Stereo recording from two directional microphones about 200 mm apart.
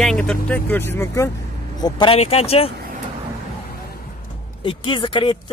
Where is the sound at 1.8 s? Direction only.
25° left (ahead or behind).